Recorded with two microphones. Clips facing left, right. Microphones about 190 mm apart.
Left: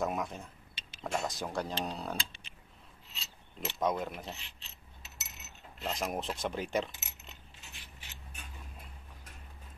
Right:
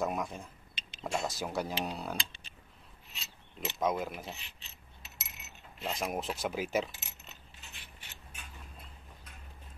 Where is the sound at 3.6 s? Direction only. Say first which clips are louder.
Even; centre (ahead or behind).